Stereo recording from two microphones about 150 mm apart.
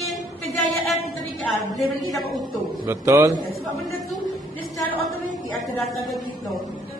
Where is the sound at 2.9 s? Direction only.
20° right (ahead or behind).